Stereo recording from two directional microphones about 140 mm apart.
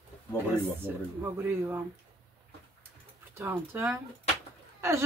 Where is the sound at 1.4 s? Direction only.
15° right (ahead or behind).